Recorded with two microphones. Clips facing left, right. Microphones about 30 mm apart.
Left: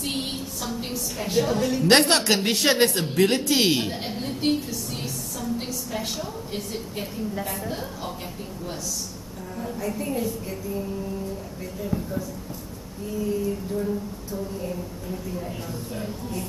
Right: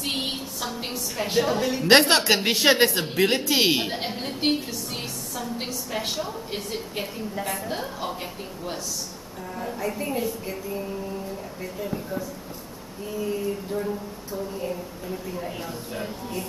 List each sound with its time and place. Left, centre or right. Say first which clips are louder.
0.0 s a woman's voice: right 1 dB; centre
7.3 s a woman's voice: right 1 dB; centre
9.6 s a woman's voice: even; centre